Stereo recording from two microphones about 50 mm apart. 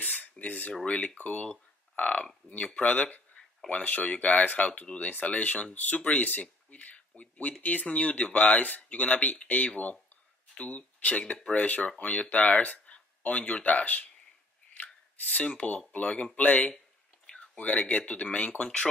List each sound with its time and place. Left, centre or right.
0.0 s a sound: left
0.8 s speech: left
15.3 s speech: left